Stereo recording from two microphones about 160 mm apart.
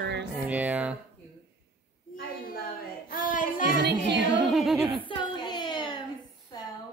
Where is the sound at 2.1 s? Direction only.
65° left (ahead or behind).